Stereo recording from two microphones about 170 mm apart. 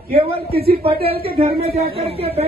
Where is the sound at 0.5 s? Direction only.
65° right (ahead or behind).